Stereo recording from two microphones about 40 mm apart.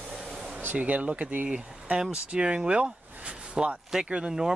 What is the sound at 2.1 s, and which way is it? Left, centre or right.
Speech, right.